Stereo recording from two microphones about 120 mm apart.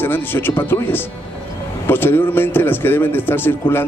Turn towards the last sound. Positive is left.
turn(degrees=20)  # may be behind; listen again after turning